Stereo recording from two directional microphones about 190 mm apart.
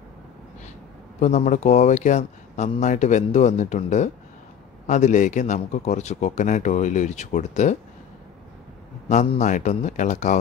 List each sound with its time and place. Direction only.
1.2 s speech: 40° left (ahead or behind)
9.1 s speech: 40° left (ahead or behind)